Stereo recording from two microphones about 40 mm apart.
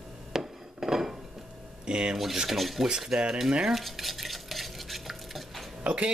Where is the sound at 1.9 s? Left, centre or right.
Right.